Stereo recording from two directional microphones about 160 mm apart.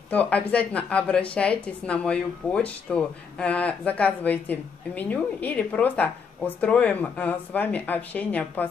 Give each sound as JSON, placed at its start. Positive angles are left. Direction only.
{"t": 0.1, "sound": "speech", "side_deg": 10}